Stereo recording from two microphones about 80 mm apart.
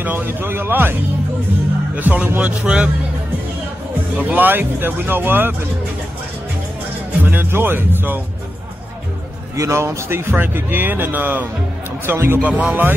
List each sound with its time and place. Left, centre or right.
0.0 s speech: right
2.0 s a man's voice: right
4.2 s speech: right
7.2 s speech: right
9.6 s speech: right
12.4 s speech: centre